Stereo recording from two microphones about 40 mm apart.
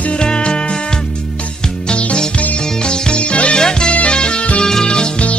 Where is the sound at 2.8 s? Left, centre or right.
Left.